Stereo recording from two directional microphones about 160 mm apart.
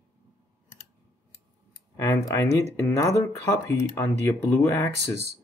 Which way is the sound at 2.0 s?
20° left (ahead or behind).